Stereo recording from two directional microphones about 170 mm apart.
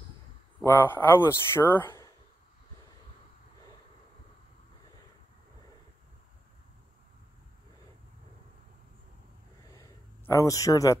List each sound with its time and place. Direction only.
0.7 s speech: 10° left (ahead or behind)
10.2 s speech: 20° left (ahead or behind)